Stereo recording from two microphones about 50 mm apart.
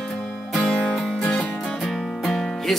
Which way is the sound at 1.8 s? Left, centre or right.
Centre.